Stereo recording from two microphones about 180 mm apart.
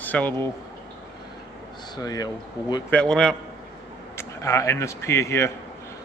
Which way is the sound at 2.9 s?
5° left (ahead or behind).